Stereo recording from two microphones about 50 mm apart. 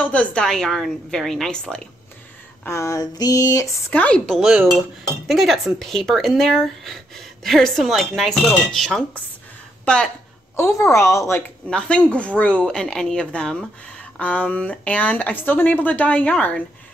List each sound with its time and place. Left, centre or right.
0.0 s speech: left
0.6 s a woman's voice: centre
2.7 s a woman's voice: left
3.9 s speech: left
4.4 s speech: centre
4.7 s speech: centre
10.7 s a woman's voice: left
11.7 s speech: left
12.6 s speech: centre